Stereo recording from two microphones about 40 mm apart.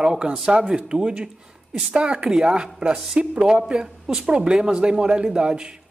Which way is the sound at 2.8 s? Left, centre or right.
Right.